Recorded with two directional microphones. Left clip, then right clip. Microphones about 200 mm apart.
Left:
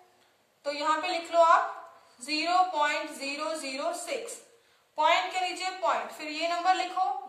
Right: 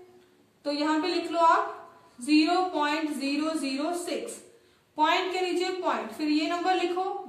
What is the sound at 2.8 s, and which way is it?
A woman's voice, 30° left (ahead or behind).